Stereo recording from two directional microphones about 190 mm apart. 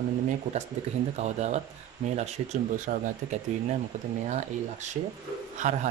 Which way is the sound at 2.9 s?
45° right (ahead or behind).